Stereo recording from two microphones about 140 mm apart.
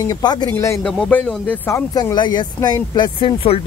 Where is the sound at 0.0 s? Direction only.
25° left (ahead or behind).